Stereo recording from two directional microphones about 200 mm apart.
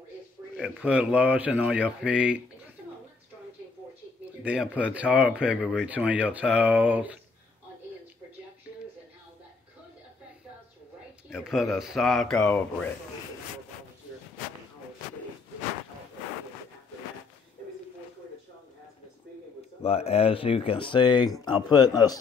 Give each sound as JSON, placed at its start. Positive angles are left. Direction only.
{"t": 0.6, "sound": "speech", "side_deg": -5}
{"t": 4.4, "sound": "speech", "side_deg": -5}
{"t": 11.2, "sound": "speech", "side_deg": 0}
{"t": 19.8, "sound": "speech", "side_deg": 30}